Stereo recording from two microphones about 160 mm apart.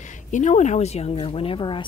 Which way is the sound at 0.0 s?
50° left (ahead or behind).